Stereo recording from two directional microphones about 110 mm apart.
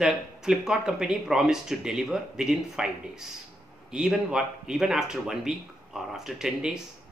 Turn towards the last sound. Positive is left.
turn(degrees=-5)  # may be behind; listen again after turning